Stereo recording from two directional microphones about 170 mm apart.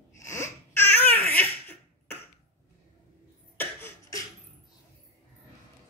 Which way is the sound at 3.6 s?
15° left (ahead or behind).